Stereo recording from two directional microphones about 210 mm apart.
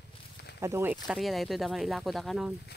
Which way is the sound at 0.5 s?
15° right (ahead or behind).